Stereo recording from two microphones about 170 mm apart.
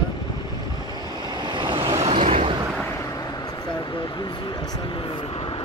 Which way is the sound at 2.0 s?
35° right (ahead or behind).